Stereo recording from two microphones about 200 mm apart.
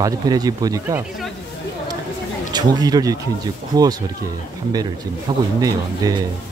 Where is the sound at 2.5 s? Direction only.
20° right (ahead or behind).